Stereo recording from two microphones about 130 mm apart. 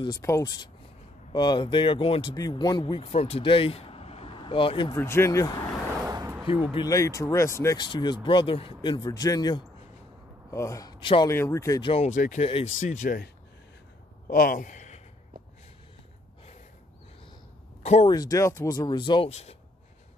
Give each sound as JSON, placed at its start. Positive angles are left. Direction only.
{"t": 0.2, "sound": "speech", "side_deg": 25}
{"t": 4.9, "sound": "speech", "side_deg": 20}
{"t": 6.0, "sound": "a sound", "side_deg": -30}
{"t": 6.9, "sound": "speech", "side_deg": 25}
{"t": 7.7, "sound": "a man's voice", "side_deg": 35}
{"t": 11.2, "sound": "speech", "side_deg": 20}
{"t": 11.8, "sound": "speech", "side_deg": 45}
{"t": 12.1, "sound": "speech", "side_deg": 75}
{"t": 14.2, "sound": "a man's voice", "side_deg": 90}
{"t": 18.0, "sound": "speech", "side_deg": 30}